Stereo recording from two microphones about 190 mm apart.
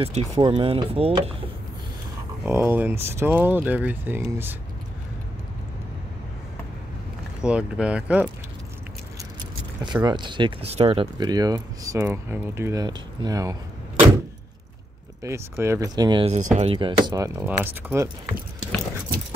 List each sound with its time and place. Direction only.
0.0 s speech: 30° right (ahead or behind)
2.4 s speech: 10° right (ahead or behind)
7.4 s speech: 5° right (ahead or behind)
10.0 s speech: 25° right (ahead or behind)
15.2 s speech: 15° right (ahead or behind)
16.3 s speech: 35° right (ahead or behind)
16.7 s speech: 25° right (ahead or behind)